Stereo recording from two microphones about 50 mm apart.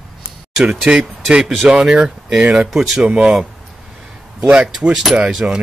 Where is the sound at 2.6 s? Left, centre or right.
Centre.